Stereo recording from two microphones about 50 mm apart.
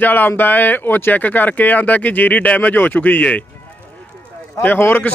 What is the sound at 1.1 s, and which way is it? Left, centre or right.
Speech, left.